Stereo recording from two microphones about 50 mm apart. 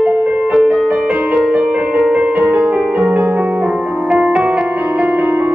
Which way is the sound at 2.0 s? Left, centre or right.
Right.